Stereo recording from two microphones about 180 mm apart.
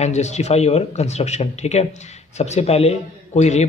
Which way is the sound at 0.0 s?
40° left (ahead or behind).